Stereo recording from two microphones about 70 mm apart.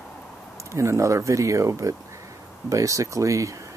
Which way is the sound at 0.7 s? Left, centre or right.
Right.